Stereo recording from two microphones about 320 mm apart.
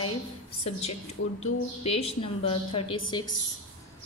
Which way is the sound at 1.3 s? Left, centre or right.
Left.